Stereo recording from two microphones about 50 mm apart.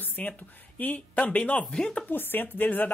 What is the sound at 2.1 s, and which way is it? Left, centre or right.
Speech, left.